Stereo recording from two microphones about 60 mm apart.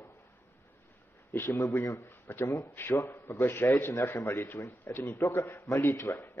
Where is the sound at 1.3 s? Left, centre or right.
Left.